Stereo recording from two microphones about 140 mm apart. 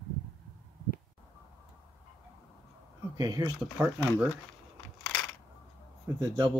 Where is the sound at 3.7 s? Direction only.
10° right (ahead or behind).